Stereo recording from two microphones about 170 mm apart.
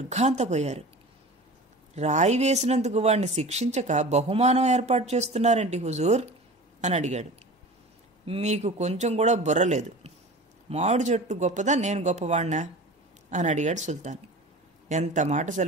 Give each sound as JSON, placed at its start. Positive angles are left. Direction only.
{"t": 0.1, "sound": "speech", "side_deg": -40}
{"t": 2.0, "sound": "speech", "side_deg": -40}
{"t": 8.3, "sound": "speech", "side_deg": -40}